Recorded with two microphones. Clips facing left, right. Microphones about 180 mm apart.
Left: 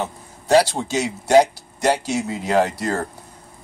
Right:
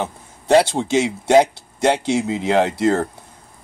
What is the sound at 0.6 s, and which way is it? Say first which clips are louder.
Speech: right 2 dB; 20° right (ahead or behind).